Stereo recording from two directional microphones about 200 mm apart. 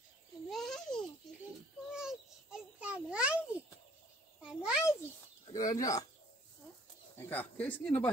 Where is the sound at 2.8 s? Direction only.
5° right (ahead or behind).